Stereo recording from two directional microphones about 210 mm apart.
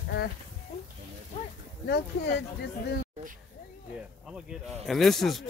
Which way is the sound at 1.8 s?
50° left (ahead or behind).